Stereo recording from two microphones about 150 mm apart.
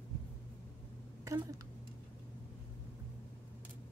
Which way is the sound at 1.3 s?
20° right (ahead or behind).